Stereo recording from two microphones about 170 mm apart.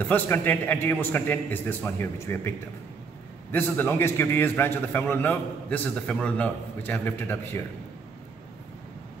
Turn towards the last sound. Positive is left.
turn(degrees=15)  # may be behind; listen again after turning